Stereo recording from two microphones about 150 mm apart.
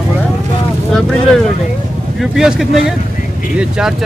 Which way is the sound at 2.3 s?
5° right (ahead or behind).